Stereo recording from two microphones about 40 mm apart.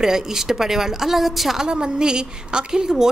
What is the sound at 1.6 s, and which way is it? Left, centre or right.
A woman's voice, centre.